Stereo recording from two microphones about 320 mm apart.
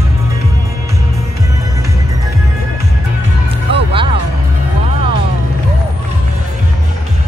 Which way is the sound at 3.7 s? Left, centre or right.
Centre.